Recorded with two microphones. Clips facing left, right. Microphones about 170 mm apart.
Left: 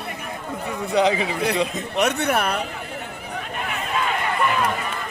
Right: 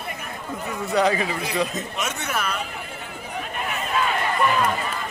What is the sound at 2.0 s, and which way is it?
Speech, 60° left (ahead or behind).